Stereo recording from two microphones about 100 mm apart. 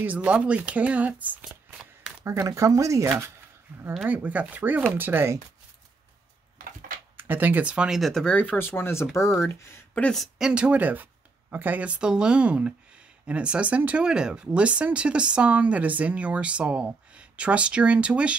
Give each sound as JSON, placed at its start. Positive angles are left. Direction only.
{"t": 0.0, "sound": "speech", "side_deg": -15}
{"t": 2.2, "sound": "speech", "side_deg": -30}
{"t": 4.0, "sound": "speech", "side_deg": -15}
{"t": 7.2, "sound": "speech", "side_deg": -20}
{"t": 10.1, "sound": "speech", "side_deg": 0}
{"t": 10.5, "sound": "speech", "side_deg": -10}